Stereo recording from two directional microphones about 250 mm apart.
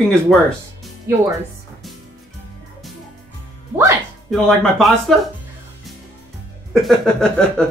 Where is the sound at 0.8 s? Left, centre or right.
Centre.